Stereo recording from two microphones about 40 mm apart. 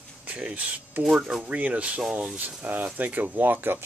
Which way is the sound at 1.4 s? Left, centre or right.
Right.